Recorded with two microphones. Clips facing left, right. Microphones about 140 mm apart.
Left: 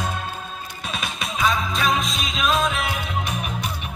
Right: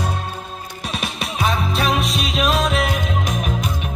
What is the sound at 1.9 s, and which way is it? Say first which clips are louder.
Music: right 3 dB; 70° right (ahead or behind).